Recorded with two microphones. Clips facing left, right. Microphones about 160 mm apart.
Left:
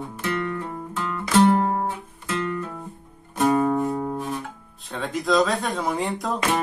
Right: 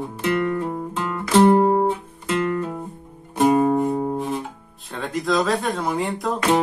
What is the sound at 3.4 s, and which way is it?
Music, 20° right (ahead or behind).